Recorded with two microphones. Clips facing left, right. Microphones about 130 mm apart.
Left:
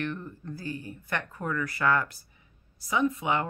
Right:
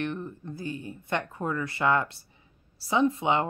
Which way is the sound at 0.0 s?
20° right (ahead or behind).